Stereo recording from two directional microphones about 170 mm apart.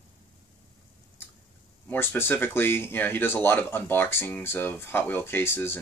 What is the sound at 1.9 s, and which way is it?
Speech, 15° left (ahead or behind).